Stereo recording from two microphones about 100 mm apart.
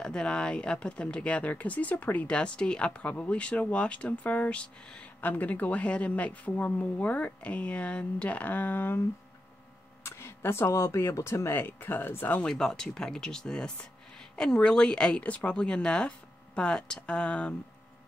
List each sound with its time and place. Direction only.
0.0 s speech: 10° left (ahead or behind)
10.0 s speech: 25° left (ahead or behind)
12.4 s speech: 5° left (ahead or behind)